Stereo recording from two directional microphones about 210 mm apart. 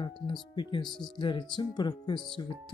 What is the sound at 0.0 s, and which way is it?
Speech, 20° left (ahead or behind).